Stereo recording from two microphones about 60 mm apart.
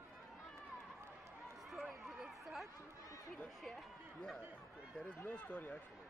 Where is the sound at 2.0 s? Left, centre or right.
Centre.